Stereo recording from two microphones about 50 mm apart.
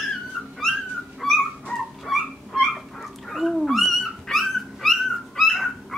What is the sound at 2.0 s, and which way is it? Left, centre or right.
Dog, centre.